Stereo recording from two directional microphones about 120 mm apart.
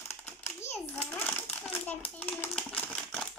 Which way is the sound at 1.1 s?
10° left (ahead or behind).